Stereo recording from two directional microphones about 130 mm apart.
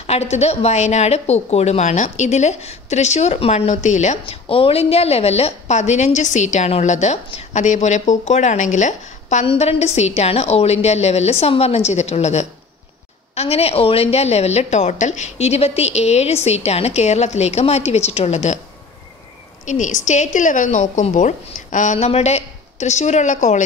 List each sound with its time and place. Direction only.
0.0 s a woman's voice: 55° left (ahead or behind)
4.5 s a woman's voice: 45° left (ahead or behind); by 9.5 s 65° left (ahead or behind)
9.5 s a woman's voice: 55° left (ahead or behind)
19.6 s a woman's voice: 70° left (ahead or behind)
21.9 s a woman's voice: 55° left (ahead or behind); by 23.6 s 70° left (ahead or behind)